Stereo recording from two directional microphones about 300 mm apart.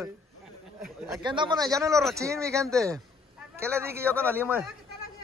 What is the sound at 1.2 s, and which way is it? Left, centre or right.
Speech, centre.